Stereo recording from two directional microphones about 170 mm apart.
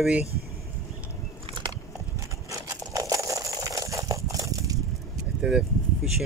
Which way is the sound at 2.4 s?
20° right (ahead or behind).